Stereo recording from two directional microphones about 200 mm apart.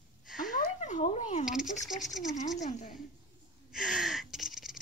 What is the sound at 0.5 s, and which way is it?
Cat, 35° left (ahead or behind).